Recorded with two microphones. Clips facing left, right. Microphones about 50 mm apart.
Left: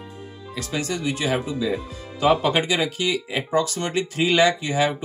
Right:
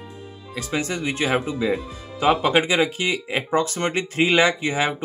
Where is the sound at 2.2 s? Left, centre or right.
Right.